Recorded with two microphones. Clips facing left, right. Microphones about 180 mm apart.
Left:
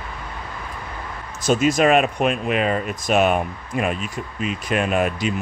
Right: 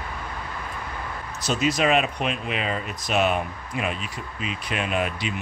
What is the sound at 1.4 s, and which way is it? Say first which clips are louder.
Speech: left 6 dB; 50° left (ahead or behind).